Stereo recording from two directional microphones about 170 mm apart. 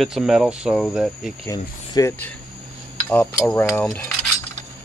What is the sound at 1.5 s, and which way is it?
Speech, 20° left (ahead or behind).